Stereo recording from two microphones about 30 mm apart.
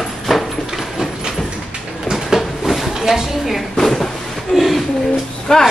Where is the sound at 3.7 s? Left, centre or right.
Centre.